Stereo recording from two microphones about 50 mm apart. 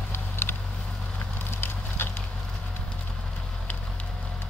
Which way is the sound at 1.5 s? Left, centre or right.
Left.